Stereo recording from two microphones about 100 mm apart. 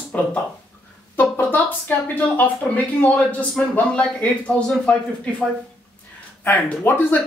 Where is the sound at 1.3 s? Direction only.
15° left (ahead or behind).